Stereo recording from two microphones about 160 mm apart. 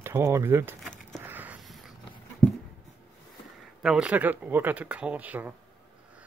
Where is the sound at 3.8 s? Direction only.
5° right (ahead or behind).